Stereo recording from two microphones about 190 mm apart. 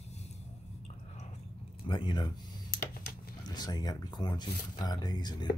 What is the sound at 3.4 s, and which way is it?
Speech, 20° left (ahead or behind).